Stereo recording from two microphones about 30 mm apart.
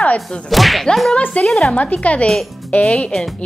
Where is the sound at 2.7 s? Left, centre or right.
Left.